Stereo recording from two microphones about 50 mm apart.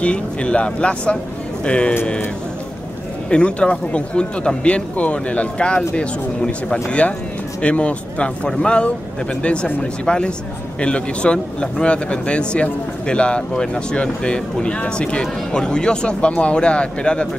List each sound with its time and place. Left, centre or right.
0.0 s speech: left
3.3 s speech: left